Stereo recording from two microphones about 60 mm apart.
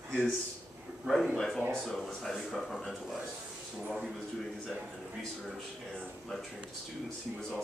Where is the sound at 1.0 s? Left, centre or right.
Centre.